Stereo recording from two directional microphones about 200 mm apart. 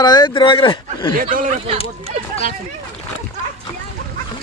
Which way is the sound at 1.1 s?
45° right (ahead or behind).